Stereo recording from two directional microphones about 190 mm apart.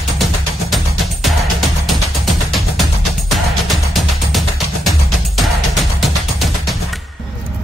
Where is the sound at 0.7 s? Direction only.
Centre (ahead or behind).